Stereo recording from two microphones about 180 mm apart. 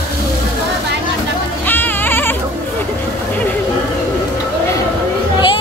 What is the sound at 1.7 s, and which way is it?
Music, 10° left (ahead or behind).